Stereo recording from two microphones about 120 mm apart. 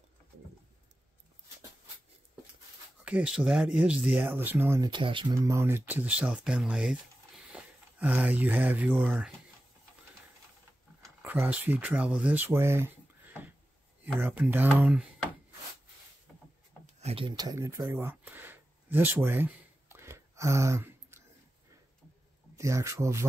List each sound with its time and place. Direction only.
3.1 s speech: 10° right (ahead or behind); by 4.9 s 25° right (ahead or behind)
4.9 s speech: 45° right (ahead or behind)
5.3 s speech: 25° right (ahead or behind)
11.2 s speech: 15° right (ahead or behind)
14.8 s speech: 5° right (ahead or behind)
16.8 s a sound: 60° right (ahead or behind)
17.4 s a sound: 30° right (ahead or behind)
22.6 s speech: 25° right (ahead or behind)